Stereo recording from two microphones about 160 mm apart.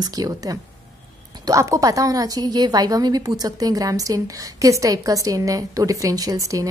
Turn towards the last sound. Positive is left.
turn(degrees=-20)  # may be behind; listen again after turning